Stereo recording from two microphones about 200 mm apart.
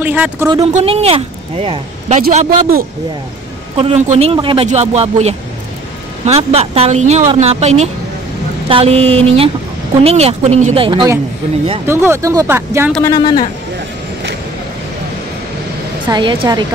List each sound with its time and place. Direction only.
0.0 s speech: 10° right (ahead or behind)
0.7 s a woman's voice: 30° right (ahead or behind)
2.3 s speech: 40° right (ahead or behind)
3.7 s a man's voice: 30° right (ahead or behind)
11.8 s speech: 10° right (ahead or behind)
13.0 s a man's voice: 20° left (ahead or behind)
16.1 s a man's voice: 25° right (ahead or behind)